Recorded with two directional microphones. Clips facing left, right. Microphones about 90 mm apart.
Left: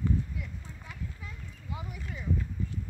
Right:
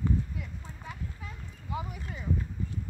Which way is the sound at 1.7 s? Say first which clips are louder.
Right 4 dB; 30° right (ahead or behind).